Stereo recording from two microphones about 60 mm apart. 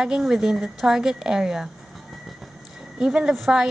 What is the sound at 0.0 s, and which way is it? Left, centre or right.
A woman's voice, centre.